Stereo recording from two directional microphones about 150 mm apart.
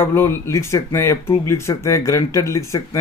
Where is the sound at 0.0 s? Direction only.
15° left (ahead or behind).